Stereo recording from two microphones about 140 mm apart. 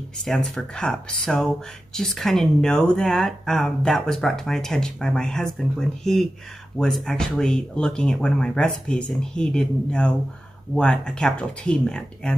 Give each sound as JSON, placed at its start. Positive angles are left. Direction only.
{"t": 0.2, "sound": "speech", "side_deg": 5}